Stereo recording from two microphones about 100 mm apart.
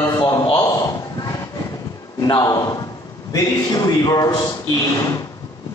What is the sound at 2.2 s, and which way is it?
A man's voice, 40° left (ahead or behind).